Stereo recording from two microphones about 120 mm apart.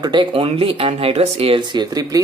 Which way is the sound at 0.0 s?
40° right (ahead or behind).